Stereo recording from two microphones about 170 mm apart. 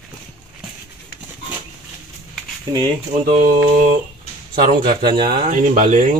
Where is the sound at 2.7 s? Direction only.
25° right (ahead or behind).